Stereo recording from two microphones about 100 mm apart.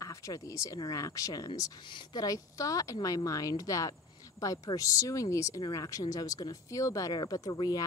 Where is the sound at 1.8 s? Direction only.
50° left (ahead or behind).